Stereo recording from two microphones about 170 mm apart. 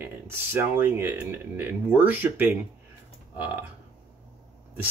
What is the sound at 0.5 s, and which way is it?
Speech, 10° right (ahead or behind).